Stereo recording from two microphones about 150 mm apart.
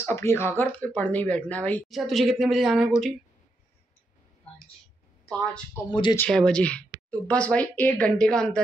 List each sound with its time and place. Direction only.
0.0 s a woman's voice: 15° left (ahead or behind); by 3.1 s centre (ahead or behind)
5.3 s a woman's voice: 5° left (ahead or behind)
5.9 s speech: 30° left (ahead or behind)
6.1 s a woman's voice: 5° left (ahead or behind)